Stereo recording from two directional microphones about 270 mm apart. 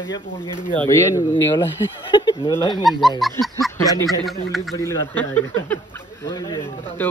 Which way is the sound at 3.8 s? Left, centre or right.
Centre.